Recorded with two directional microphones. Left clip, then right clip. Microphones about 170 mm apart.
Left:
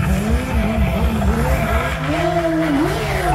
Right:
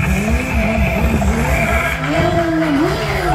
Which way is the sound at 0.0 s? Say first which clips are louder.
Right 3 dB; 55° right (ahead or behind).